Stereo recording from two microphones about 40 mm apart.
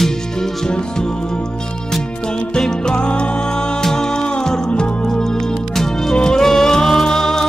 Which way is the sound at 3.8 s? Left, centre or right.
Centre.